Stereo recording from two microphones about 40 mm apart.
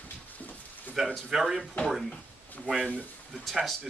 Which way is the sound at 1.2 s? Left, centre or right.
Centre.